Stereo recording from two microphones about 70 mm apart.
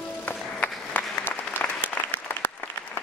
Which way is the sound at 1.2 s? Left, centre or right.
Left.